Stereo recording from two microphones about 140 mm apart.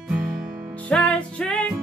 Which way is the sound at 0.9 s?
10° left (ahead or behind).